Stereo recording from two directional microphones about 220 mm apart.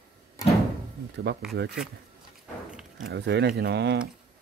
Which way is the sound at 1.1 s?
50° right (ahead or behind).